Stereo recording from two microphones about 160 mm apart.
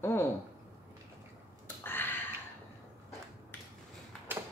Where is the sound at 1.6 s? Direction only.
15° left (ahead or behind).